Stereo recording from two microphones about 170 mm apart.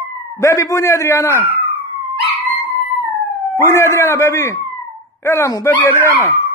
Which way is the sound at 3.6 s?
15° left (ahead or behind).